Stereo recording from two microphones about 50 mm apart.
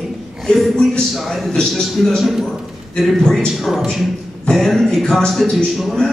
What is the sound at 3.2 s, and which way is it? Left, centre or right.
Speech, centre.